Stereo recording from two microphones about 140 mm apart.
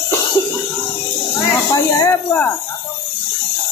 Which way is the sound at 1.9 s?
15° left (ahead or behind).